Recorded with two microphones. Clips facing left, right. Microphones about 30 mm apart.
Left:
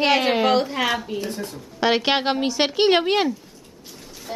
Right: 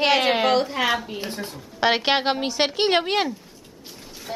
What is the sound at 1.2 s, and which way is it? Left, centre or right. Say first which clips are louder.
Speech: left 2 dB; right.